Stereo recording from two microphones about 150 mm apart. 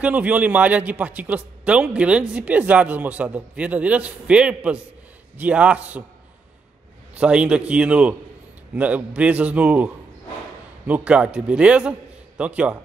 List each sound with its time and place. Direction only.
0.0 s a man's voice: 10° right (ahead or behind)
7.2 s a man's voice: 5° right (ahead or behind)
10.9 s a man's voice: 5° right (ahead or behind)